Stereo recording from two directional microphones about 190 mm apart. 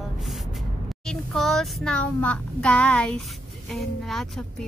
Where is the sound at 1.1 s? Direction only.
Centre (ahead or behind).